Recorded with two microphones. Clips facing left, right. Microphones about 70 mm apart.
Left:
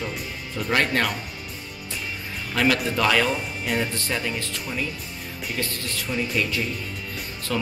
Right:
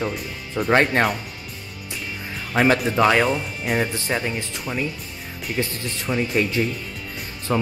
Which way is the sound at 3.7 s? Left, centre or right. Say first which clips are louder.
Right 4 dB; right.